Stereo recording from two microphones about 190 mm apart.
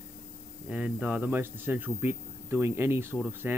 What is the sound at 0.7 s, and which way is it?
Speech, 5° right (ahead or behind).